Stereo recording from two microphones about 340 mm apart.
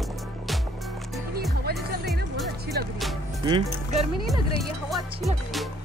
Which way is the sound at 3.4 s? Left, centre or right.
Centre.